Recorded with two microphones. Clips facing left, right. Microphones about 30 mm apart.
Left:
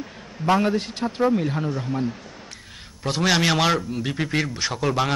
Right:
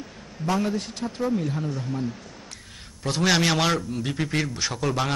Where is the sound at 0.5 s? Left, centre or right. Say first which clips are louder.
Left 5 dB; left.